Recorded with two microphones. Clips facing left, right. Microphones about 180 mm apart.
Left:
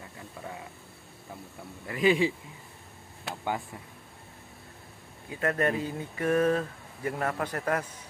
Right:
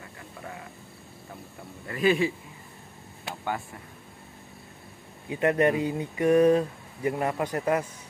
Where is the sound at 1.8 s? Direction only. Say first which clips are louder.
Right 1 dB; 15° left (ahead or behind).